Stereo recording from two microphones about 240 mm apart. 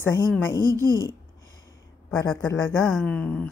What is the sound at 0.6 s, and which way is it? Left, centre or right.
Speech, centre.